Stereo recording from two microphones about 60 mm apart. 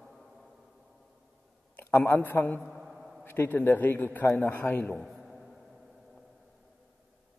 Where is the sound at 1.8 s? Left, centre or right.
Left.